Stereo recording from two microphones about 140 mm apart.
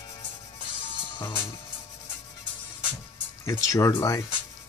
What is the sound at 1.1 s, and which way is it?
Music, 30° left (ahead or behind).